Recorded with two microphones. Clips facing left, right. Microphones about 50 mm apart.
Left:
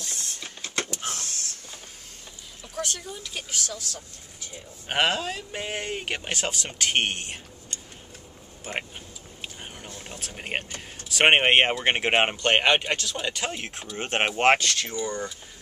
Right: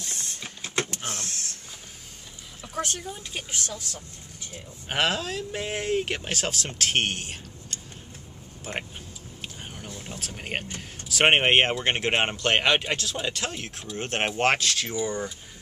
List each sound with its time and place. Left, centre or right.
0.4 s printer: right
0.8 s power windows: right
2.7 s speech: right
4.8 s speech: centre
9.4 s a sound: centre
9.8 s speech: centre
13.6 s speech: left
14.6 s speech: centre
15.0 s speech: centre